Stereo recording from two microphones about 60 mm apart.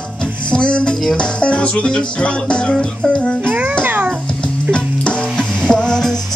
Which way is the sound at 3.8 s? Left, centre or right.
Right.